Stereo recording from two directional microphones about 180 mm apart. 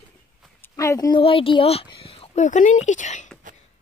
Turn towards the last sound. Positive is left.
turn(degrees=40)  # may be behind; listen again after turning